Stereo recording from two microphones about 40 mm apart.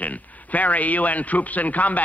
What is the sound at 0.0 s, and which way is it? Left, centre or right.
A man's voice, left.